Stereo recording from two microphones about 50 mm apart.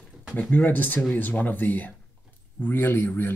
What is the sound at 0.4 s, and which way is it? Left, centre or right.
Speech, left.